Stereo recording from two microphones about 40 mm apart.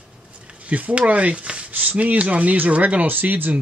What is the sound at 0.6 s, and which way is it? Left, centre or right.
Speech, right.